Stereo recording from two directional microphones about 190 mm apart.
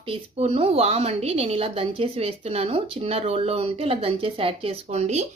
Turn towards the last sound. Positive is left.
turn(degrees=-35)  # may be behind; listen again after turning